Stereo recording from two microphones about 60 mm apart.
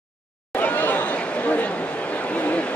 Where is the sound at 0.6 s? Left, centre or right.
Left.